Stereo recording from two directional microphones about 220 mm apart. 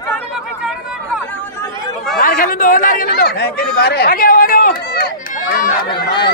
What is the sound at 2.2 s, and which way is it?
Speech, 40° left (ahead or behind).